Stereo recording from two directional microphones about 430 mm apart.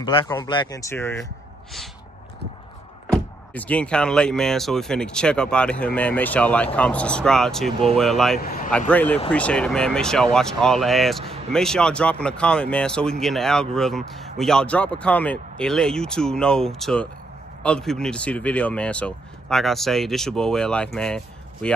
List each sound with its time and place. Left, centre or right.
0.0 s speech: centre
3.1 s speech: centre
8.4 s speech: centre
8.7 s speech: centre